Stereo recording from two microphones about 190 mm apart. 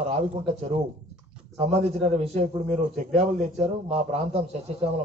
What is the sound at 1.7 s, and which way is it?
A man's voice, 35° right (ahead or behind).